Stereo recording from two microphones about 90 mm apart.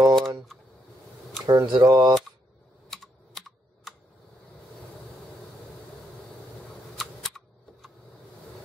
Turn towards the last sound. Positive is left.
turn(degrees=0)  # may be behind; listen again after turning